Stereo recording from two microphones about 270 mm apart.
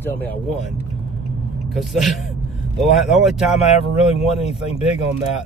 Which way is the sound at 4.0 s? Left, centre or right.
Left.